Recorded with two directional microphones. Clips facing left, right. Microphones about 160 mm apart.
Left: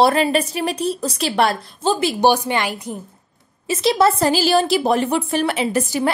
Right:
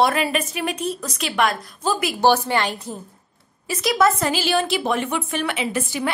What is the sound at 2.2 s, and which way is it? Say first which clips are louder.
Speech: even; 15° left (ahead or behind).